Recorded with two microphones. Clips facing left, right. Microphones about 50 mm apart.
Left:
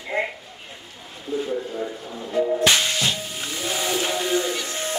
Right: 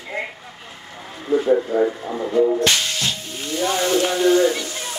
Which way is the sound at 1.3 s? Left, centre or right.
Right.